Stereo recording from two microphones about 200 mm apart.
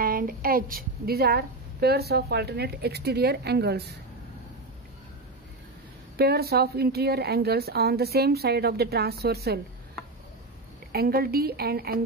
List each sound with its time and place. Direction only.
0.0 s a woman's voice: 45° right (ahead or behind)
6.1 s a woman's voice: 50° right (ahead or behind)
10.9 s a woman's voice: 50° right (ahead or behind)